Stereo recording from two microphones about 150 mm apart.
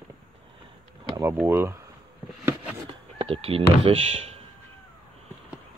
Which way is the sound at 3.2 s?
40° right (ahead or behind).